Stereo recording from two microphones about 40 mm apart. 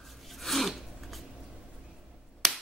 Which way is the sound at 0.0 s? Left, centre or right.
Centre.